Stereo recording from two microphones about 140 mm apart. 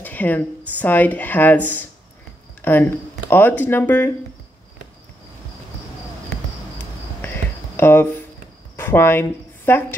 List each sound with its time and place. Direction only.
0.0 s speech: 10° left (ahead or behind)
2.6 s speech: 15° left (ahead or behind)
7.7 s a woman's voice: 15° left (ahead or behind)